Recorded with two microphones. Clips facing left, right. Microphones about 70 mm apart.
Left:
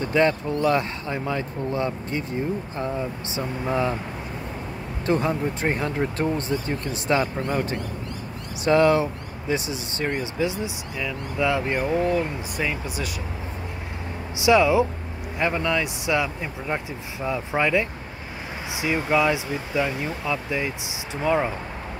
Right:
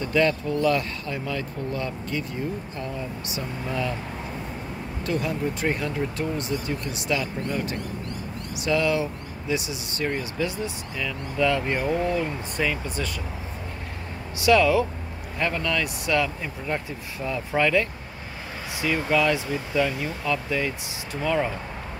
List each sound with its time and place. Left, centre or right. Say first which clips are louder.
0.0 s speech: left 2 dB; left
5.0 s speech: left 4 dB; left
10.1 s speech: left 2 dB; centre
14.4 s speech: left 1 dB; centre